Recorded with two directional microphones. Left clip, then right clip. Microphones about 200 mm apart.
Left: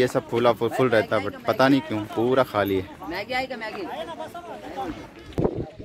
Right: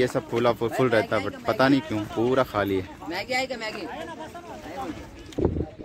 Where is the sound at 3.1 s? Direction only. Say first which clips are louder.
Right 1 dB; 55° right (ahead or behind).